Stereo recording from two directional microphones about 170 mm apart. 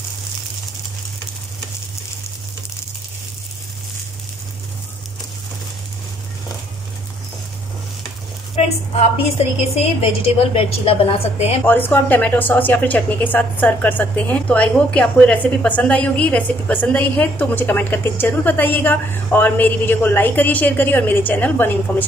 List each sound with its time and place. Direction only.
9.8 s a woman's voice: 35° left (ahead or behind)
11.6 s a woman's voice: 10° left (ahead or behind)